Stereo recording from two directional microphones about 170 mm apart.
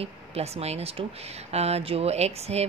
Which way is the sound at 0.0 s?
35° right (ahead or behind).